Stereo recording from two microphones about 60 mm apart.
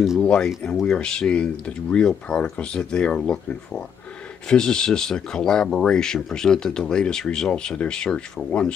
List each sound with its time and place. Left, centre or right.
0.2 s speech: centre